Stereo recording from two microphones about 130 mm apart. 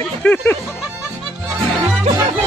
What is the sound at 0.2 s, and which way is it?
Speech, 10° left (ahead or behind).